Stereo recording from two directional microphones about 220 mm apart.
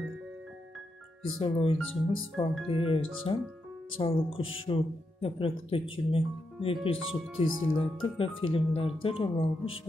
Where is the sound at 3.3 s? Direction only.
20° left (ahead or behind).